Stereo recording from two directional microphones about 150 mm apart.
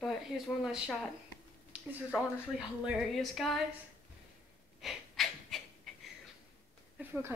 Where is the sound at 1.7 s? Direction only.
5° right (ahead or behind).